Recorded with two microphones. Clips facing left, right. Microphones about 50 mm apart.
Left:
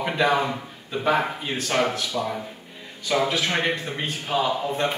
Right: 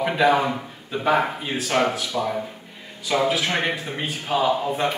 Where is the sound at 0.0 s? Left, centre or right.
Centre.